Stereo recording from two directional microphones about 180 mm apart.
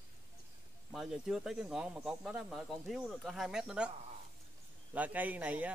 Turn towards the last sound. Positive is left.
turn(degrees=-10)  # may be behind; listen again after turning